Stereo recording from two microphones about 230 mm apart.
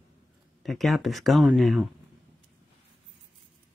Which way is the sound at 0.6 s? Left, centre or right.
Centre.